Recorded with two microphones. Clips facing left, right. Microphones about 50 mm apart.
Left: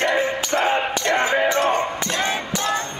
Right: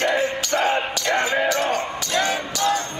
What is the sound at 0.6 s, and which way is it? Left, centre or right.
Music, left.